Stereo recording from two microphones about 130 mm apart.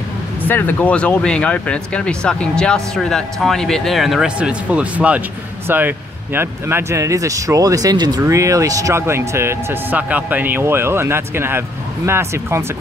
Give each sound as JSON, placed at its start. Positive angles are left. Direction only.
{"t": 0.5, "sound": "speech", "side_deg": 15}